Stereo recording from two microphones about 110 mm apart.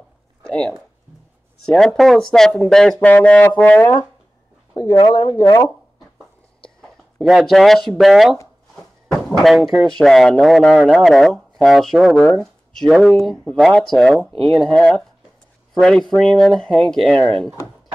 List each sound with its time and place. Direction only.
0.4 s a sound: 10° left (ahead or behind)
1.7 s speech: 5° left (ahead or behind)
4.7 s speech: 45° left (ahead or behind)
6.1 s a sound: centre (ahead or behind)
9.9 s speech: 5° left (ahead or behind)
14.3 s speech: 55° right (ahead or behind)
14.8 s speech: 5° left (ahead or behind)